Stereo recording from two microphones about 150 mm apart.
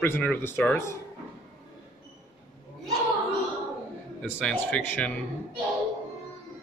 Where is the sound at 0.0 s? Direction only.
15° left (ahead or behind).